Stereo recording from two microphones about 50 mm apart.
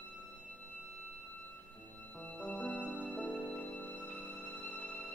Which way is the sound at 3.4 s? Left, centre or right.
Left.